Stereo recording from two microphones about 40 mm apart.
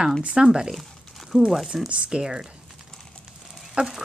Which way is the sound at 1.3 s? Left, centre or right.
Centre.